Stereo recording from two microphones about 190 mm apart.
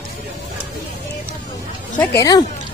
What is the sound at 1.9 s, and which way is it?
Speech, 20° left (ahead or behind).